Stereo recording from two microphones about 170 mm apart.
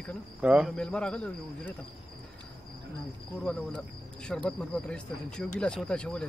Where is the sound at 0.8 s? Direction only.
5° left (ahead or behind).